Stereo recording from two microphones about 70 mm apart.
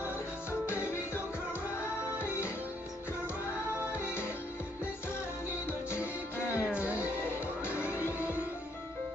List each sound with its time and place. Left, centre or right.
0.5 s music: left
3.7 s music: right
4.0 s music: left
5.7 s music: left